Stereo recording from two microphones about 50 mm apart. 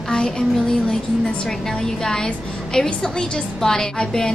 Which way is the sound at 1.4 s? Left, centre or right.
Centre.